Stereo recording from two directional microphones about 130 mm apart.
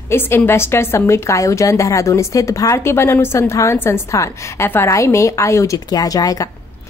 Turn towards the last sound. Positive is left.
turn(degrees=25)  # may be behind; listen again after turning